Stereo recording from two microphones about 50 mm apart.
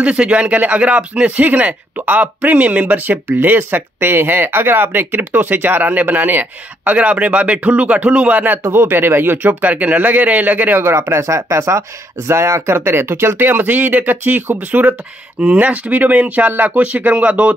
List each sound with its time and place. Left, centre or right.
0.0 s speech: right
8.7 s speech: right
11.0 s speech: right
12.3 s speech: right
13.4 s speech: right